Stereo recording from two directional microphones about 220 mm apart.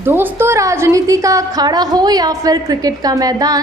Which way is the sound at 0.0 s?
10° right (ahead or behind).